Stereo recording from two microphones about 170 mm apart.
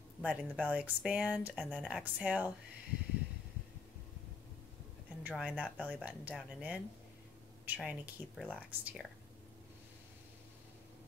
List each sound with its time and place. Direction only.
0.2 s speech: 5° right (ahead or behind)
5.2 s speech: 5° right (ahead or behind)